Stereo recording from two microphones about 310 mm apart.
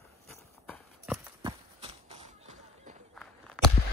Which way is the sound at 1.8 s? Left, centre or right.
Centre.